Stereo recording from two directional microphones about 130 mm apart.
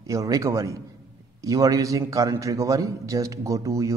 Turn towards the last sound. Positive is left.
turn(degrees=-25)  # may be behind; listen again after turning